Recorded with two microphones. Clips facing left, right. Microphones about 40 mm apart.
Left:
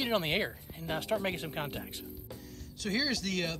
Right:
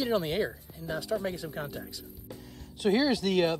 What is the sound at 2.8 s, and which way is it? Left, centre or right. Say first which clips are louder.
Speech: right 7 dB; right.